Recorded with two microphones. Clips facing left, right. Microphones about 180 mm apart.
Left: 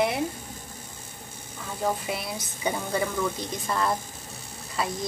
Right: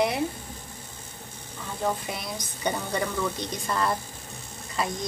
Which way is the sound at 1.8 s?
5° left (ahead or behind).